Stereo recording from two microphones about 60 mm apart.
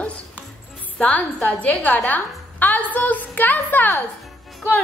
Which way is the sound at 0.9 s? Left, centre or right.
Left.